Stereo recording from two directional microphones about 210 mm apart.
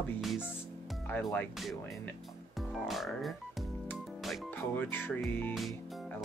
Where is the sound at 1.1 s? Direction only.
10° left (ahead or behind).